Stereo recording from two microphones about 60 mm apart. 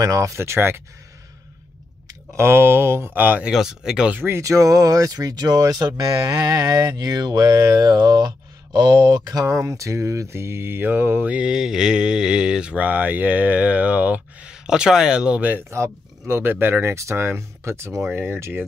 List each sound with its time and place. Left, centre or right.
0.0 s speech: right
0.4 s speech: right
2.3 s speech: right
3.2 s speech: right
3.4 s speech: centre
4.4 s speech: right
9.3 s mantra: right
11.2 s speech: right
11.5 s speech: centre; by 14.5 s right
14.5 s speech: centre
15.7 s speech: right
16.4 s speech: right
16.9 s speech: right
18.3 s speech: right